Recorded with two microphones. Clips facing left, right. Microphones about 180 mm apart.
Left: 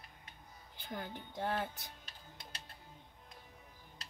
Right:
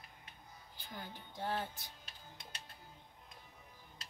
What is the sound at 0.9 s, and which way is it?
Speech, 55° left (ahead or behind).